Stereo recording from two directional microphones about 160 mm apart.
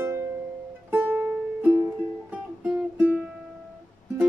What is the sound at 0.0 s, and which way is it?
Music, 15° right (ahead or behind).